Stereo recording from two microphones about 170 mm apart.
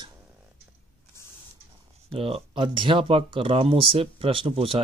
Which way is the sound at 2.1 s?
35° right (ahead or behind).